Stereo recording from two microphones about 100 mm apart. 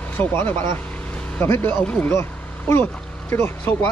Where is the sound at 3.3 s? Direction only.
25° left (ahead or behind).